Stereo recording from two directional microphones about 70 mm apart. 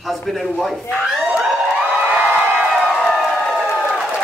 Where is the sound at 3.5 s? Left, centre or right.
Centre.